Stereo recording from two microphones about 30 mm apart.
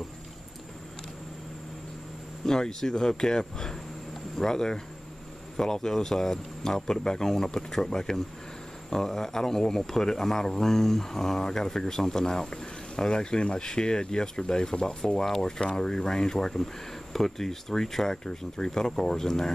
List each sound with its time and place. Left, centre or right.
2.4 s a man's voice: centre